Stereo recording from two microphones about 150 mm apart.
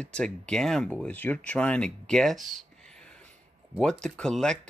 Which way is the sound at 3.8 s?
5° left (ahead or behind).